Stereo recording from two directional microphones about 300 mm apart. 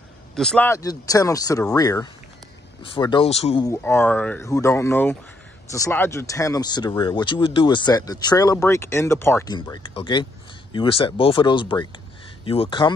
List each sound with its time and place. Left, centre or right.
0.4 s speech: centre